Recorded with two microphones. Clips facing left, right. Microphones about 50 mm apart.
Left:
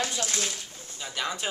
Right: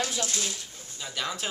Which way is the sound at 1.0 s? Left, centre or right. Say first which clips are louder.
Left 1 dB; centre.